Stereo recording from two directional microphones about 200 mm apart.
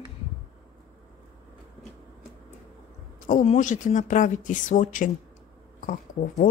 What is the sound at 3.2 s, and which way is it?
Speech, 40° left (ahead or behind).